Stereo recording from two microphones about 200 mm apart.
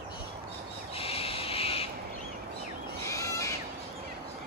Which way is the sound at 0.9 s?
30° left (ahead or behind).